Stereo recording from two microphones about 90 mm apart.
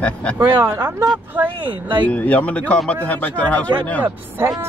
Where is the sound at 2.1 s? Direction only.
15° left (ahead or behind).